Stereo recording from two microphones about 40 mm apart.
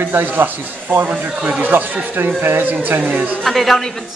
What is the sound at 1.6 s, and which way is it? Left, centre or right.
Speech, right.